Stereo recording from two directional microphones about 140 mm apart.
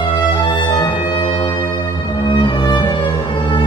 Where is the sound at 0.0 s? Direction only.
35° left (ahead or behind).